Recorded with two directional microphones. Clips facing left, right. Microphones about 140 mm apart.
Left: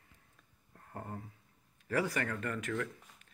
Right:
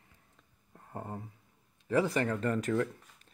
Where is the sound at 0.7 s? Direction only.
15° right (ahead or behind).